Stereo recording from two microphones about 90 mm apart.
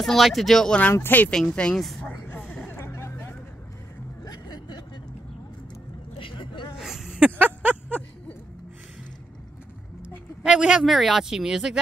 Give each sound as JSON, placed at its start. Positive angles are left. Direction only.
{"t": 0.0, "sound": "speech", "side_deg": 0}
{"t": 0.9, "sound": "speech", "side_deg": 20}
{"t": 1.3, "sound": "speech", "side_deg": 10}
{"t": 2.7, "sound": "vehicle", "side_deg": 30}
{"t": 4.2, "sound": "music", "side_deg": 45}
{"t": 6.1, "sound": "vehicle", "side_deg": 70}
{"t": 6.8, "sound": "a sound", "side_deg": -5}
{"t": 10.0, "sound": "speech", "side_deg": -10}